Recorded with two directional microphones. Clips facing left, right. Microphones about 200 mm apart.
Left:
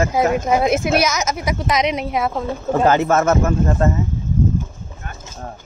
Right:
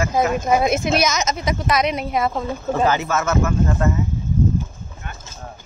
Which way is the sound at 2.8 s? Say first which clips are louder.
Left 6 dB; 50° left (ahead or behind).